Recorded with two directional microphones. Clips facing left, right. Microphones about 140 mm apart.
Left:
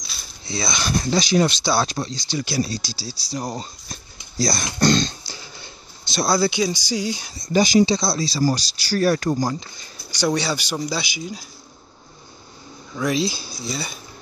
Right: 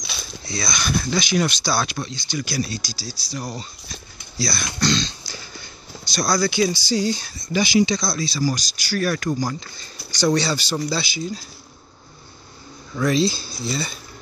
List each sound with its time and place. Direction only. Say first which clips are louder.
0.0 s a sound: right 6 dB; 75° right (ahead or behind)
0.5 s speech: left 1 dB; 25° left (ahead or behind)
1.9 s speech: left 2 dB; 35° left (ahead or behind)
3.5 s a sound: left 2 dB; 40° left (ahead or behind)
4.7 s speech: left 4 dB; 50° left (ahead or behind)
5.2 s a sound: right 1 dB; 25° left (ahead or behind)
6.7 s speech: right 3 dB; 15° left (ahead or behind)
7.3 s speech: left 4 dB; 40° left (ahead or behind)
7.9 s speech: left 2 dB; 30° left (ahead or behind)
9.5 s speech: left 2 dB; 20° left (ahead or behind)
12.9 s speech: right 3 dB; 10° left (ahead or behind)